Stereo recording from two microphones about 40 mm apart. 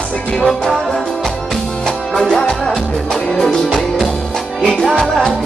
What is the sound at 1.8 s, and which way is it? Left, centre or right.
Music, centre.